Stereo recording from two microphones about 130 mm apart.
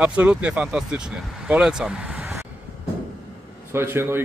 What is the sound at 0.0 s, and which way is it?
Speech, 10° right (ahead or behind).